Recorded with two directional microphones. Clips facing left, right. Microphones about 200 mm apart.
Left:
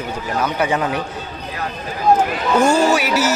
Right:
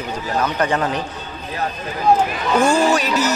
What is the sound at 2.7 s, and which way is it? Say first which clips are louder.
Speech: left 1 dB; 10° left (ahead or behind).